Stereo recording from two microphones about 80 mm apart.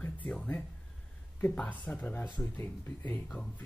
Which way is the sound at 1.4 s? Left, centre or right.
Centre.